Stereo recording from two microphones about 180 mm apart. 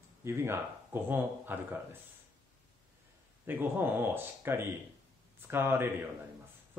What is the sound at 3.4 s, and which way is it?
A man's voice, 10° right (ahead or behind).